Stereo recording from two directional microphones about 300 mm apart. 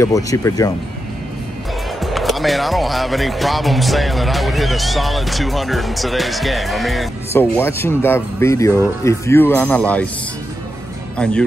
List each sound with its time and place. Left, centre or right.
0.0 s speech: centre
2.0 s speech: centre
11.1 s speech: centre